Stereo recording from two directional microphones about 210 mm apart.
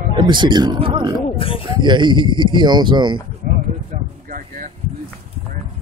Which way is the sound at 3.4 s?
45° right (ahead or behind).